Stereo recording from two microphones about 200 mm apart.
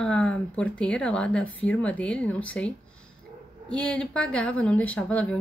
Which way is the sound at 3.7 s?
5° left (ahead or behind).